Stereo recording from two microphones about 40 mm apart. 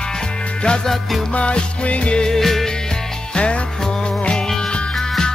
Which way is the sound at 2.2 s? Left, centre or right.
Centre.